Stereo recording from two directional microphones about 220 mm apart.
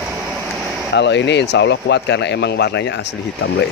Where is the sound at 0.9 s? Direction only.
50° left (ahead or behind).